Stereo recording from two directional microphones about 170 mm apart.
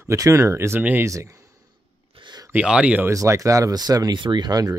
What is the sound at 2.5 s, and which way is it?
Speech, 5° right (ahead or behind).